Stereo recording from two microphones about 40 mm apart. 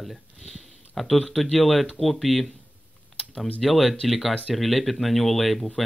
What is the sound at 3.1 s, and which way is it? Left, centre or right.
Typing, centre.